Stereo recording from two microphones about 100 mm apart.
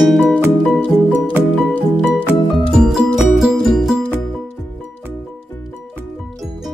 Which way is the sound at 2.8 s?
Centre (ahead or behind).